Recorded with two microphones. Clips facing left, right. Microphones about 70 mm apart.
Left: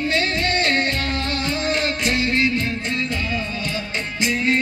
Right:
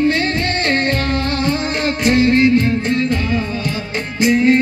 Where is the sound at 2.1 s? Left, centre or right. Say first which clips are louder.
Right 10 dB; centre.